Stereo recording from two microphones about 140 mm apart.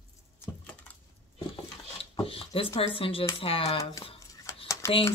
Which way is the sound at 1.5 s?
40° left (ahead or behind).